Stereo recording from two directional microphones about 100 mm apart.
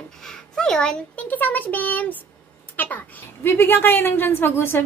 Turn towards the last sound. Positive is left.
turn(degrees=20)  # may be behind; listen again after turning